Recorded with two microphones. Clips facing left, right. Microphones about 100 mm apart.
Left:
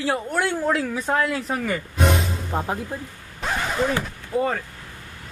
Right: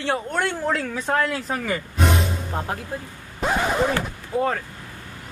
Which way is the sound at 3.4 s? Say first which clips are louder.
Right 3 dB; 15° right (ahead or behind).